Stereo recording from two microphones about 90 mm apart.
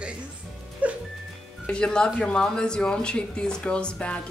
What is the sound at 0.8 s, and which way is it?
Music, 15° right (ahead or behind).